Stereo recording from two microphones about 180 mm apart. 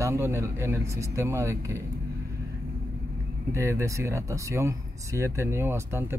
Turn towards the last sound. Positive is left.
turn(degrees=-15)  # may be behind; listen again after turning